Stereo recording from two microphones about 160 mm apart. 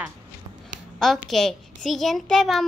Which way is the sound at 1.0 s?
Centre (ahead or behind).